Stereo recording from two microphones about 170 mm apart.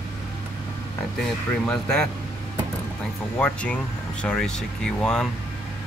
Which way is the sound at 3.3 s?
5° left (ahead or behind).